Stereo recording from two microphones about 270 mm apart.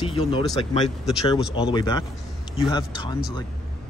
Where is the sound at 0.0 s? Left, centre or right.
Left.